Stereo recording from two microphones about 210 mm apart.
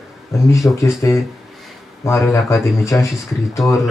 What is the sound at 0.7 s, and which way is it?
Speech, 15° left (ahead or behind).